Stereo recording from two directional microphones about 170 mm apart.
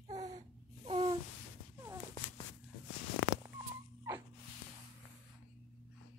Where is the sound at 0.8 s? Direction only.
35° right (ahead or behind).